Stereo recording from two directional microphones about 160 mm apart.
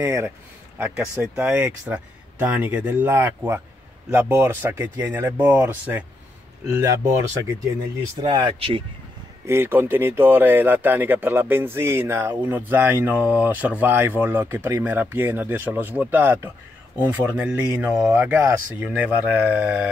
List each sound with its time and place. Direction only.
0.0 s speech: 15° right (ahead or behind)
8.2 s speech: 25° right (ahead or behind)
9.5 s speech: 15° right (ahead or behind)